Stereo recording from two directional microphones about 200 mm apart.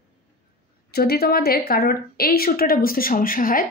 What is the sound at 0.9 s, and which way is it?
Speech, 50° left (ahead or behind).